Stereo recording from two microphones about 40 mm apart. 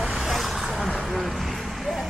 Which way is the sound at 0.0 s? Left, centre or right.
Centre.